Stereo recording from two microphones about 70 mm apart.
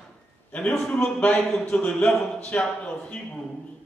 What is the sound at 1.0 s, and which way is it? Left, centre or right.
A man's voice, centre.